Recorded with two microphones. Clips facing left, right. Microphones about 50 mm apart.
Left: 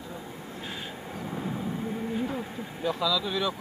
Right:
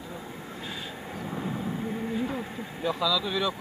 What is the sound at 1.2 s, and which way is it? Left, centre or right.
Vehicle, centre.